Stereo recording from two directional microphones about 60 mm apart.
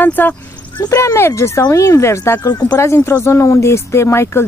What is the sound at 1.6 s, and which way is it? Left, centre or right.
Speech, left.